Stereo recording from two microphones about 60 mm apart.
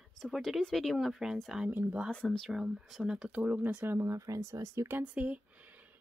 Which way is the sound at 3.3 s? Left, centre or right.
Right.